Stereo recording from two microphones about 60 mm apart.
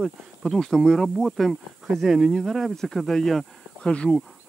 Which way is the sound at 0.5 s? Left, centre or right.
Centre.